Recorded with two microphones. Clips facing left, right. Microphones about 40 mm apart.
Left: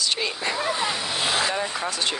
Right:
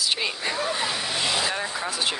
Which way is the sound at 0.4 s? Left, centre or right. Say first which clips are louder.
Left 1 dB; centre.